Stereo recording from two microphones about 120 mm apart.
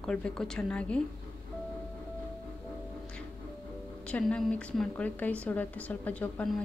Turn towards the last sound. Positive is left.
turn(degrees=10)  # may be behind; listen again after turning